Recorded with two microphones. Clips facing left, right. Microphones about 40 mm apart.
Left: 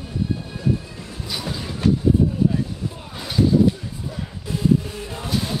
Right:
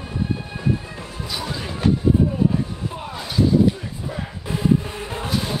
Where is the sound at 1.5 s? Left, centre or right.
Right.